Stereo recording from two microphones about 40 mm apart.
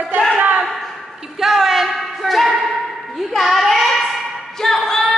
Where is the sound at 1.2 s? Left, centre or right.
Centre.